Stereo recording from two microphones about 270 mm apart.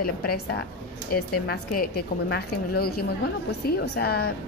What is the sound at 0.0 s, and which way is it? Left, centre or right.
A woman's voice, left.